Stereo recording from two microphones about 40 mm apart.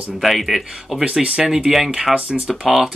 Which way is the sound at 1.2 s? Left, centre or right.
Right.